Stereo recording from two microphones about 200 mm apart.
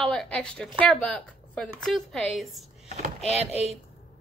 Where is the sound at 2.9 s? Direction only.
30° right (ahead or behind).